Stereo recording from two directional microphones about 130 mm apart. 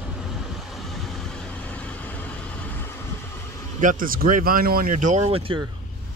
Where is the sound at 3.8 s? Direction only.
90° right; by 5.2 s 70° right (ahead or behind).